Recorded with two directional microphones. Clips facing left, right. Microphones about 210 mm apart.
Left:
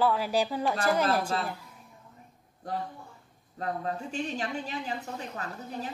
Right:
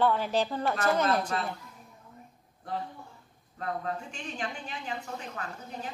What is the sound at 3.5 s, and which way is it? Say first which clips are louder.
A woman's voice: left 1 dB; 35° left (ahead or behind).